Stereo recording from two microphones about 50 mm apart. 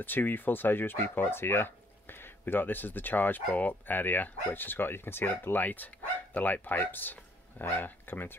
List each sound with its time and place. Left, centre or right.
0.0 s speech: left